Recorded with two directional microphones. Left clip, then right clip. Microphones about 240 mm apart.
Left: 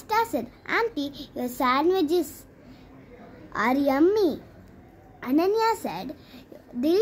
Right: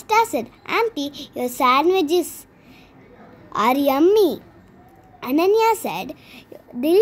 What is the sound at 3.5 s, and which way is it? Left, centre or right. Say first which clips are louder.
A child's voice: right 6 dB; centre.